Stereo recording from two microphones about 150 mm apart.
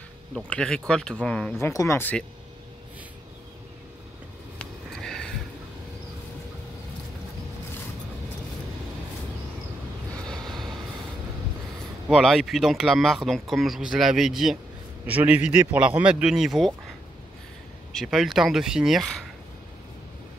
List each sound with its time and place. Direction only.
0.5 s speech: 5° left (ahead or behind)
1.7 s speech: 20° left (ahead or behind)
4.6 s a sound: 5° left (ahead or behind)
10.2 s a sound: 5° left (ahead or behind)
12.1 s a man's voice: centre (ahead or behind)
17.9 s speech: centre (ahead or behind)